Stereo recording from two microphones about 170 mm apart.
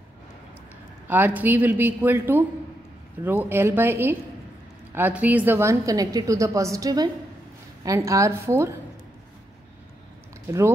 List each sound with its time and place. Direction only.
1.0 s a man's voice: 10° right (ahead or behind)